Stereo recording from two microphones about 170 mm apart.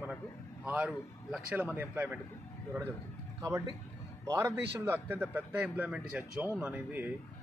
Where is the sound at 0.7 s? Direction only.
5° right (ahead or behind).